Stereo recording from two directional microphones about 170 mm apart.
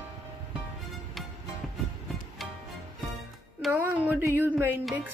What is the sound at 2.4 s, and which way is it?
Music, centre (ahead or behind).